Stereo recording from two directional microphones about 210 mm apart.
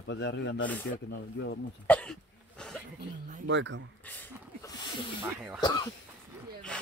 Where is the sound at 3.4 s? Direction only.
60° right (ahead or behind).